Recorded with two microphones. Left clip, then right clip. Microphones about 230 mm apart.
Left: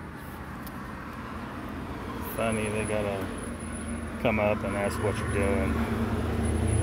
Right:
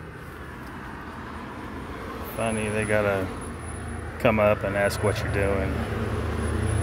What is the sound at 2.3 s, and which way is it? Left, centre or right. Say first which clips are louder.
Speech: right 2 dB; centre.